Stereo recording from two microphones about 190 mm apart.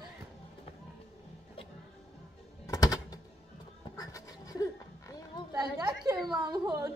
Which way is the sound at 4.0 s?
20° left (ahead or behind).